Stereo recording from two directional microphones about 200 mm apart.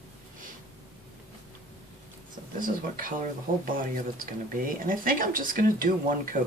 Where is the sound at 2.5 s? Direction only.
45° right (ahead or behind).